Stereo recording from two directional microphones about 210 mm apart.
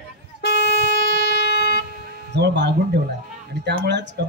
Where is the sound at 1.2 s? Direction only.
55° left (ahead or behind).